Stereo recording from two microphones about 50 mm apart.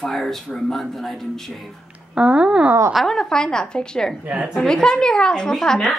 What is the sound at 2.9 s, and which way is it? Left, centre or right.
Speech, centre.